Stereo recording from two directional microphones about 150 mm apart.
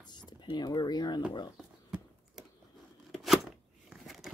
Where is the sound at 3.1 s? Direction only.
Centre (ahead or behind).